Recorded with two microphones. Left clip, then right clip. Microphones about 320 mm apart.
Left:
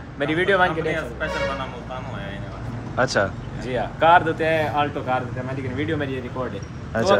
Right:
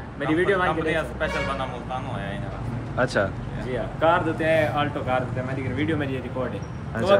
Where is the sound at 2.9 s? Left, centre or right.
Centre.